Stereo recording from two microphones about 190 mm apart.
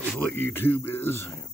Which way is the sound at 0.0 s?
10° left (ahead or behind).